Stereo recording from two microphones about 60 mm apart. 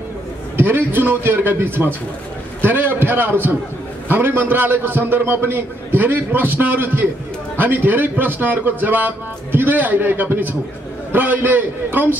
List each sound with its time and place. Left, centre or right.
0.6 s a man's voice: right